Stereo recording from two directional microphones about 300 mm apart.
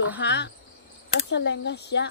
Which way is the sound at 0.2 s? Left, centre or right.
Left.